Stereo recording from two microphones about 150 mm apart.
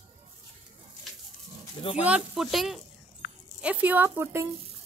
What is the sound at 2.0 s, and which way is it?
Speech, 5° right (ahead or behind).